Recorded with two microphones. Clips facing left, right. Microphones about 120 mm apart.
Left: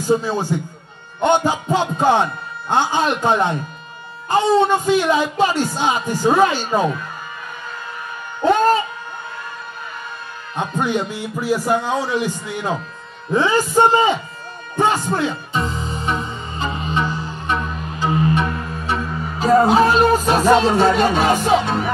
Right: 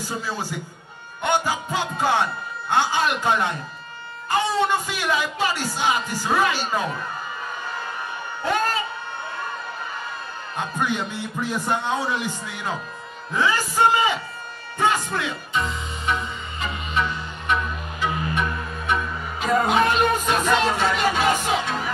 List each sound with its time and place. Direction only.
0.1 s speech: 20° left (ahead or behind)
8.5 s a sound: 25° left (ahead or behind)
10.5 s music: 25° left (ahead or behind)
11.6 s a man's voice: 10° left (ahead or behind)
13.3 s speech: 25° left (ahead or behind)
14.8 s music: 30° left (ahead or behind)